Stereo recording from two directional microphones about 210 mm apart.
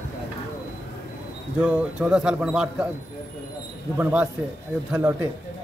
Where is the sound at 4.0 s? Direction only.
5° right (ahead or behind).